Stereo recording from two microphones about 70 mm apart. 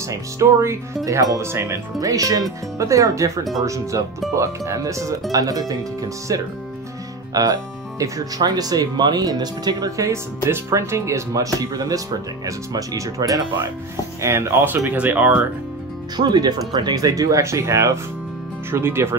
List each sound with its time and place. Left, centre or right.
0.1 s speech: right
2.0 s speech: right
7.3 s speech: right
9.8 s speech: right
10.5 s speech: right
14.2 s speech: right
14.9 s speech: right
16.2 s speech: right